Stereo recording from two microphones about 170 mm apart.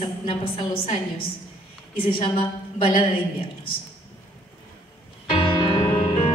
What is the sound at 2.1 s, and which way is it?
Speech, 30° left (ahead or behind).